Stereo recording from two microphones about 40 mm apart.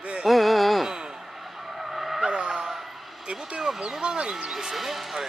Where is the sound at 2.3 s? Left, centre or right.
Right.